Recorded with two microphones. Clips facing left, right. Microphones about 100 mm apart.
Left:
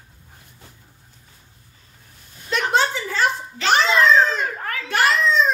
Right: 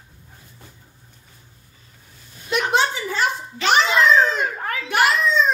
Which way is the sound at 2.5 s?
15° right (ahead or behind).